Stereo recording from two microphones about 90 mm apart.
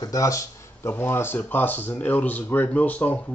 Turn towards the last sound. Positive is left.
turn(degrees=20)  # may be behind; listen again after turning